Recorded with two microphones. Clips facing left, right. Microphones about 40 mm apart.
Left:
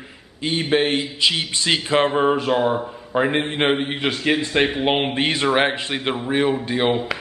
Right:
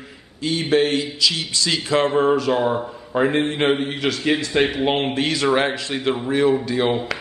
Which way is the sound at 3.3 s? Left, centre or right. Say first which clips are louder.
Right 1 dB; left.